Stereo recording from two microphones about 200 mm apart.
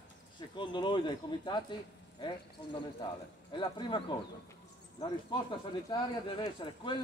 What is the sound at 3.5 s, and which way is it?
Speech, 25° left (ahead or behind).